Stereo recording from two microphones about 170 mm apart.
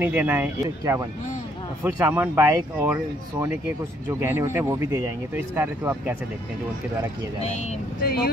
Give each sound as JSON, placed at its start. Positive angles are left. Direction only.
{"t": 0.0, "sound": "speech", "side_deg": -10}
{"t": 8.0, "sound": "speech", "side_deg": 65}